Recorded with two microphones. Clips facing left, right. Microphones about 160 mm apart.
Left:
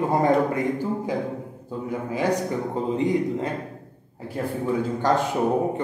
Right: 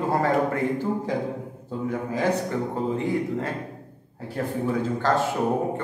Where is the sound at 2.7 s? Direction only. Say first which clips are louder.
Left 4 dB; 20° left (ahead or behind).